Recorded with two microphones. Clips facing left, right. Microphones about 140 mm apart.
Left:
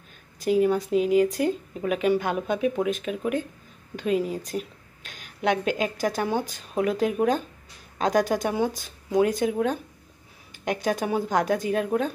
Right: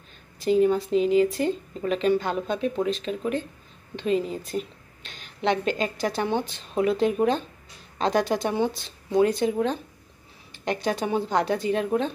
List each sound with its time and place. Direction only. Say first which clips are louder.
0.5 s speech: right 1 dB; 5° left (ahead or behind)